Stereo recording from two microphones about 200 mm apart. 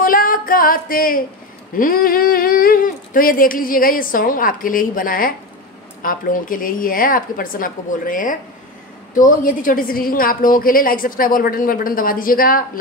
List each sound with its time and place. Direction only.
0.0 s female singing: 45° left (ahead or behind)
1.8 s speech: 45° left (ahead or behind)